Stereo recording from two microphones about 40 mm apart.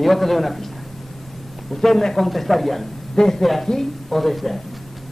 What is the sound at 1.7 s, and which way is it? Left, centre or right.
A man's voice, centre.